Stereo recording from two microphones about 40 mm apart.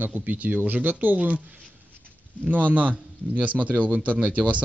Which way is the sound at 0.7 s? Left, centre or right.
Right.